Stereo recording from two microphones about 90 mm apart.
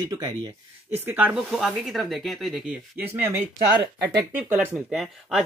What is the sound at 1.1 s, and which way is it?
Speech, 20° right (ahead or behind).